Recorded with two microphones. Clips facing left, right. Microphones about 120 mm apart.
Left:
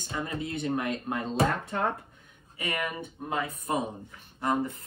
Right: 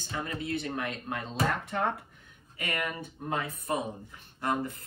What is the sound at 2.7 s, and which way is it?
Speech, 25° left (ahead or behind).